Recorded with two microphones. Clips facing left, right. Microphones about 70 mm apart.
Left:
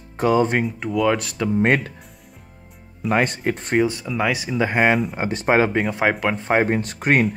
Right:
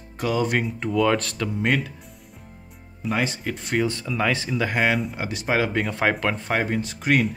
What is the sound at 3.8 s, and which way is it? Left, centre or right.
Speech, centre.